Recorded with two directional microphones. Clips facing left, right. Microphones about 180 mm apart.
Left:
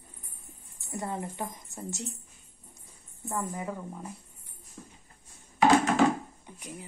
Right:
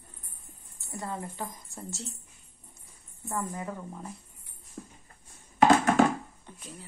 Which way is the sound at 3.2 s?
15° left (ahead or behind).